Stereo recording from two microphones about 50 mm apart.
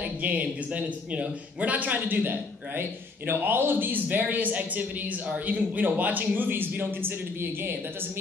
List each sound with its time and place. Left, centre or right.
0.2 s a man's voice: right